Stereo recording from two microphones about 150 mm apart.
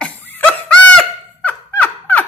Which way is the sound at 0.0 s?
10° left (ahead or behind).